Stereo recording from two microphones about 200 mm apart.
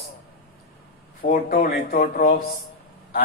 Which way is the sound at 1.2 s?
40° left (ahead or behind).